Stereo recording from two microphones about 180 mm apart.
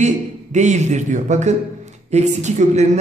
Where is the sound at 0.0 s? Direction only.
40° right (ahead or behind).